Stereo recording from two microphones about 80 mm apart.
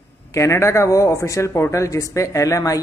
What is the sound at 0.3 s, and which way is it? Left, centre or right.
A man's voice, left.